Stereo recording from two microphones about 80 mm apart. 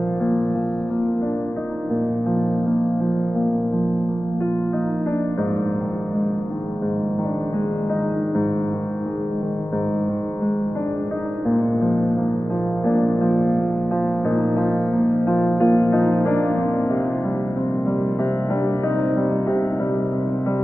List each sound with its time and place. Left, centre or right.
11.4 s music: left
15.0 s music: left
16.0 s music: left